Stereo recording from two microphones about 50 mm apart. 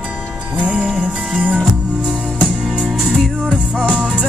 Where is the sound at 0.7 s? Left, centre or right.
Centre.